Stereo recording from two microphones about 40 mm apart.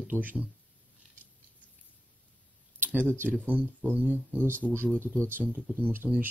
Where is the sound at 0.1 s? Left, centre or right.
Right.